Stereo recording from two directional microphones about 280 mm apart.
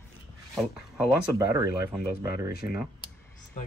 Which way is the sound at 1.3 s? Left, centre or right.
Centre.